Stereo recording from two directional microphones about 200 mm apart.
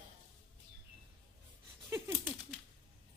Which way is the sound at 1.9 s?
10° right (ahead or behind).